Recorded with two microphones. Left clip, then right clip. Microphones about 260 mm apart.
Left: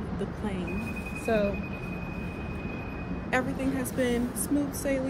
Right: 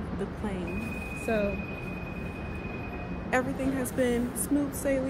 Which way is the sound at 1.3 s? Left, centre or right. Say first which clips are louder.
Left 2 dB; centre.